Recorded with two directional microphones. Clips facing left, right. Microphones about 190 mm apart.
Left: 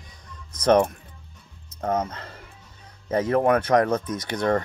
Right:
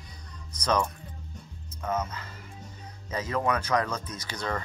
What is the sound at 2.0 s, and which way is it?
Speech, 60° left (ahead or behind).